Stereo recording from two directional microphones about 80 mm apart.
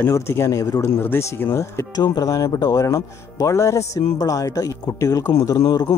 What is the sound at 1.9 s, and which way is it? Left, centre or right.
Speech, left.